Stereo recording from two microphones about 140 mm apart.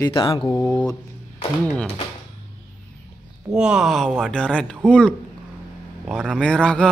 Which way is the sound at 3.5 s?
5° right (ahead or behind).